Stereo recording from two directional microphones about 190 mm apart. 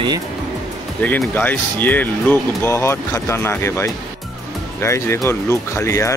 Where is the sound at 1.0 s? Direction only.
10° left (ahead or behind).